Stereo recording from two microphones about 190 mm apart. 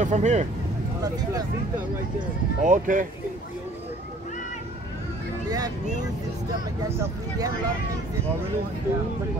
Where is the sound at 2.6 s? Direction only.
45° right (ahead or behind).